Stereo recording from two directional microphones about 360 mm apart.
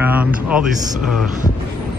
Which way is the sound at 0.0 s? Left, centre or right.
Centre.